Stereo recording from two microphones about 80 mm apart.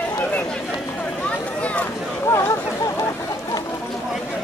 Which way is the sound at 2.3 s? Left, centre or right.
Left.